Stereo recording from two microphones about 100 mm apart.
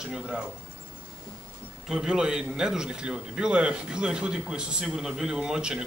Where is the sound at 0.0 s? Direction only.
5° right (ahead or behind).